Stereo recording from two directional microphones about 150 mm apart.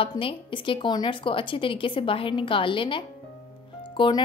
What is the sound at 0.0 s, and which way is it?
A woman's voice, 35° left (ahead or behind).